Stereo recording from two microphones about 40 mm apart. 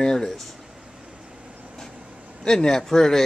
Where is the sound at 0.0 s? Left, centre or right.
Centre.